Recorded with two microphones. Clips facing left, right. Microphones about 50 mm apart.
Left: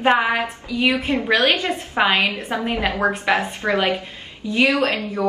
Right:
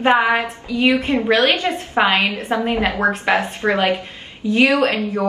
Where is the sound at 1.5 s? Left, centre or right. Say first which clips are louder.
Right 2 dB; right.